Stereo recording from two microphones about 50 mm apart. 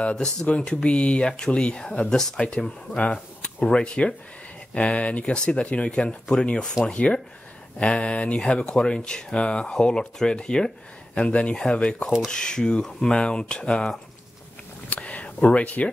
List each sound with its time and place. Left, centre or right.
0.0 s speech: centre
3.0 s a sound: centre
3.6 s speech: centre
14.9 s speech: left